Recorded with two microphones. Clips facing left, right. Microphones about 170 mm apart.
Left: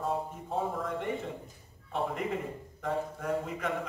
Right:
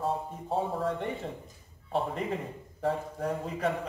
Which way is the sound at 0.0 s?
30° right (ahead or behind).